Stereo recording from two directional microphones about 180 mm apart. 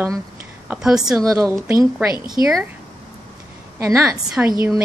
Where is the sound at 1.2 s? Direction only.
20° right (ahead or behind).